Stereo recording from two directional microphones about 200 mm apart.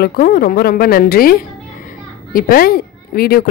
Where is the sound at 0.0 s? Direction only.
45° left (ahead or behind).